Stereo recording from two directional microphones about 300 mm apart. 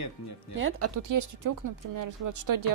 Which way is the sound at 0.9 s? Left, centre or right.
Right.